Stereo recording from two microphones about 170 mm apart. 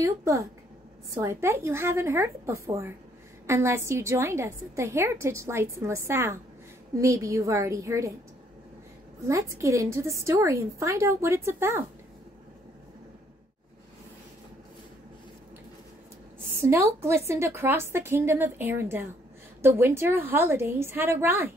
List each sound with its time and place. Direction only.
0.0 s a woman's voice: 15° right (ahead or behind)
9.3 s a woman's voice: 15° right (ahead or behind)
16.3 s a woman's voice: 15° right (ahead or behind)